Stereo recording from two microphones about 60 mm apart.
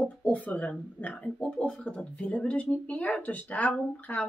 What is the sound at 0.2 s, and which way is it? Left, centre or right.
Speech, left.